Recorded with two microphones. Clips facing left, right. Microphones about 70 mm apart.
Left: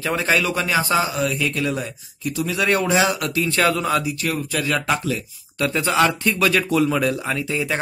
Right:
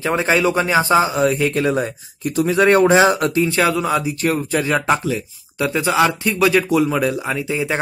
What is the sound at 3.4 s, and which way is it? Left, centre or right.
Speech, centre.